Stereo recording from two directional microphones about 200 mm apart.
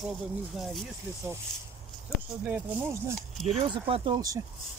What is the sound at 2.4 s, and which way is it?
Speech, 10° right (ahead or behind).